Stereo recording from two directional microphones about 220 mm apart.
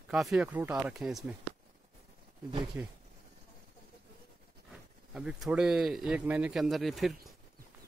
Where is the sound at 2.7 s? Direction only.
10° right (ahead or behind).